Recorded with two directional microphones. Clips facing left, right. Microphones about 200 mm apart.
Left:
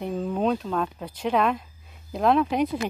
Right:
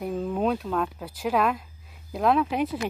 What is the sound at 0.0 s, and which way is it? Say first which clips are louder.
Speech: left 1 dB; centre (ahead or behind).